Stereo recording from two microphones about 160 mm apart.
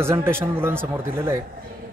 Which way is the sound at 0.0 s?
15° right (ahead or behind).